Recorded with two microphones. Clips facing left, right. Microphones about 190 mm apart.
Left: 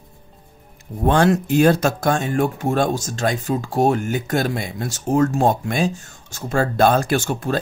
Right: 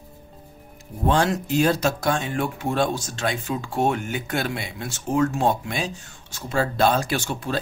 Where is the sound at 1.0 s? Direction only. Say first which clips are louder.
Left 5 dB; 55° left (ahead or behind).